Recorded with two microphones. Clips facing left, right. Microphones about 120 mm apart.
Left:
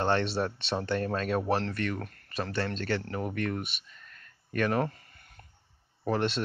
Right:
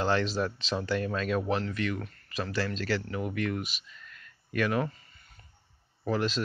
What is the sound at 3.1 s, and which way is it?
Speech, 40° left (ahead or behind).